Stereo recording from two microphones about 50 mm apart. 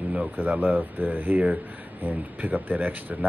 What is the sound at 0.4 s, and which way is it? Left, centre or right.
Speech, right.